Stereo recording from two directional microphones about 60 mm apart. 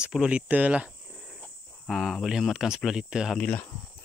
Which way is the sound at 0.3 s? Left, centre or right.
Right.